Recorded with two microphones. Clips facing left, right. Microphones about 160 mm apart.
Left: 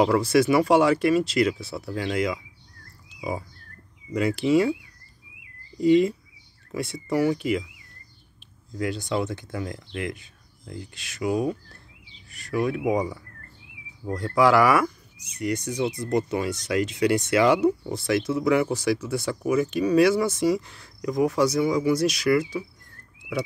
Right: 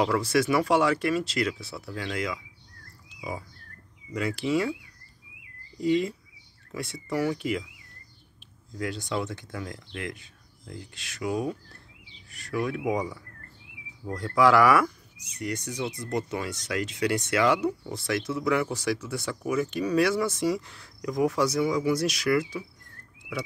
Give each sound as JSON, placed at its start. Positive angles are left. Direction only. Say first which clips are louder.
{"t": 0.2, "sound": "speech", "louder": "left 4 dB", "side_deg": 10}
{"t": 3.2, "sound": "frog", "louder": "left 5 dB", "side_deg": 25}
{"t": 4.1, "sound": "speech", "louder": "left 6 dB", "side_deg": 20}
{"t": 5.8, "sound": "speech", "louder": "left 6 dB", "side_deg": 20}
{"t": 8.7, "sound": "speech", "louder": "left 4 dB", "side_deg": 10}
{"t": 12.9, "sound": "speech", "louder": "left 4 dB", "side_deg": 20}
{"t": 14.1, "sound": "speech", "louder": "left 2 dB", "side_deg": 10}
{"t": 22.4, "sound": "speech", "louder": "left 3 dB", "side_deg": 15}